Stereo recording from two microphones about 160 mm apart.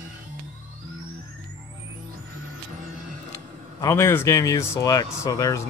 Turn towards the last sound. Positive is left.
turn(degrees=20)  # may be behind; listen again after turning